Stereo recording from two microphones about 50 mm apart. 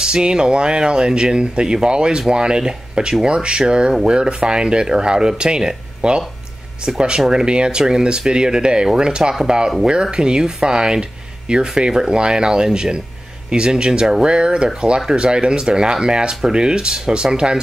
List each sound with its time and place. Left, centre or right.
0.0 s speech: centre